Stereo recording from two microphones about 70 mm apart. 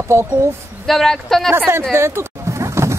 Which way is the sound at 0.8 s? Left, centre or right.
Centre.